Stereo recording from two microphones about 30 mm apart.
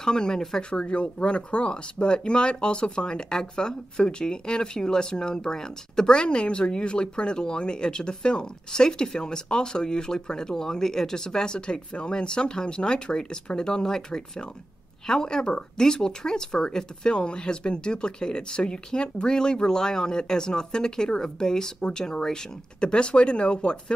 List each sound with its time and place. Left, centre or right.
0.0 s speech: left
0.6 s speech: left
22.8 s speech: left